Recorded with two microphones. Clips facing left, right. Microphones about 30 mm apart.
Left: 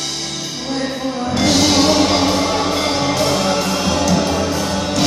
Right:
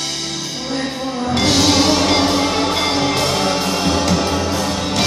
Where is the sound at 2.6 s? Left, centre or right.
Right.